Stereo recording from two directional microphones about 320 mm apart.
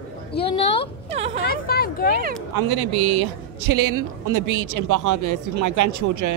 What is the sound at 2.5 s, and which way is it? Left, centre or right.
Speech, right.